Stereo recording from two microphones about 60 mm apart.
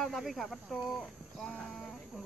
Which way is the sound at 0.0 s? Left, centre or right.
Centre.